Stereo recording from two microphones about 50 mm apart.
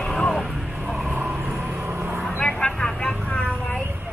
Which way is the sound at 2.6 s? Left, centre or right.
Centre.